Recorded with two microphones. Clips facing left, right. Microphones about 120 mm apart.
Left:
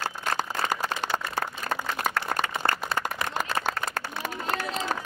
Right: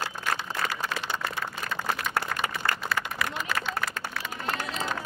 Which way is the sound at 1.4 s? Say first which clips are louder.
Left 3 dB; 45° left (ahead or behind).